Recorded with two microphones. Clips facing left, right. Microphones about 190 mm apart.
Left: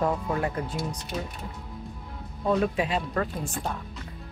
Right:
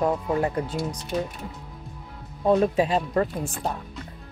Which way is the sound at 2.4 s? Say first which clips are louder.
Right 5 dB; 30° right (ahead or behind).